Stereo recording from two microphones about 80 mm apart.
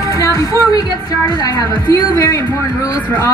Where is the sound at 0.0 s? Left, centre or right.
Left.